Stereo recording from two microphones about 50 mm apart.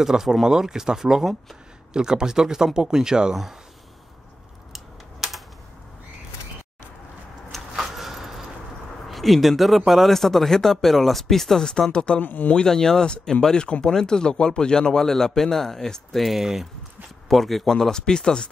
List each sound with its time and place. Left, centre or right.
0.0 s speech: centre
4.7 s typing: centre
7.7 s a sound: centre
9.0 s speech: centre
12.2 s speech: left
12.5 s a man's voice: centre